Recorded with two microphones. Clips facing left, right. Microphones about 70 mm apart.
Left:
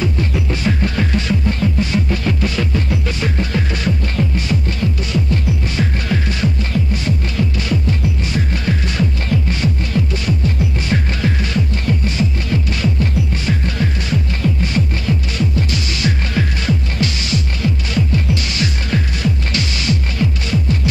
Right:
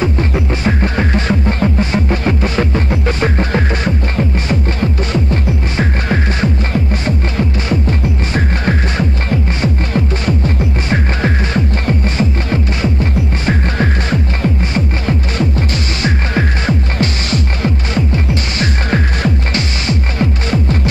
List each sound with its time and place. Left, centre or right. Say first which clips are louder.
0.0 s music: right 4 dB; right